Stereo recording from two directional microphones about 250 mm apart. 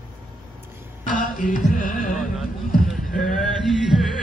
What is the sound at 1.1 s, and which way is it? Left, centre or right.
Music, left.